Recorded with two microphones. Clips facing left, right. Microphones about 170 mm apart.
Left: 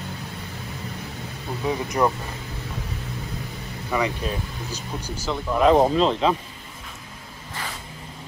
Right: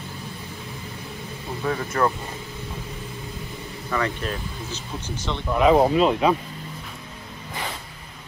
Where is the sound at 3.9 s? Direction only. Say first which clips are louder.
Left 1 dB; 10° left (ahead or behind); by 6.3 s 10° right (ahead or behind).